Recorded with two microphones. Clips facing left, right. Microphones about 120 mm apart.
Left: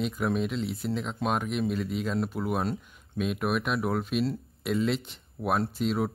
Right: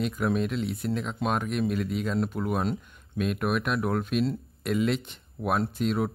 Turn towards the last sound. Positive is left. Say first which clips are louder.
# right 1 dB
turn(degrees=0)  # may be behind; listen again after turning